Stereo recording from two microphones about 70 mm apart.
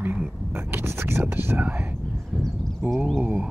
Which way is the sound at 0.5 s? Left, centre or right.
Right.